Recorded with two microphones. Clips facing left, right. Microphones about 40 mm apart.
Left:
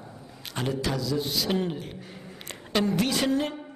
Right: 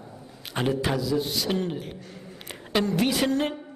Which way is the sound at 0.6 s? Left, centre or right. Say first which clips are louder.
Right 3 dB; right.